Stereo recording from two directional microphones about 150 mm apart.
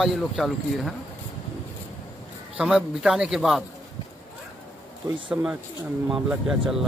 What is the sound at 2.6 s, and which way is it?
Speech, 5° right (ahead or behind).